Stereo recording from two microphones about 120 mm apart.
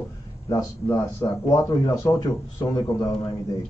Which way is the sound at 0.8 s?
30° left (ahead or behind).